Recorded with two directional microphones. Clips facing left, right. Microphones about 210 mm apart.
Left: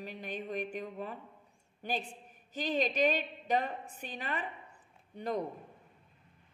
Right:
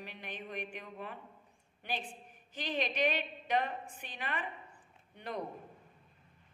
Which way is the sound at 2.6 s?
40° left (ahead or behind).